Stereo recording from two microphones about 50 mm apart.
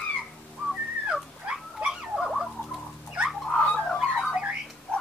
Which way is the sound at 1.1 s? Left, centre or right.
Centre.